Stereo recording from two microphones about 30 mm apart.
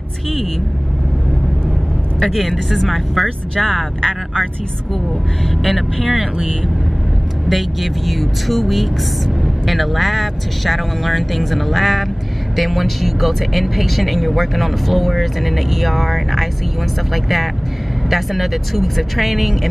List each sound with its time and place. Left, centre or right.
2.1 s speech: centre
3.5 s speech: centre
5.6 s speech: centre
7.4 s speech: centre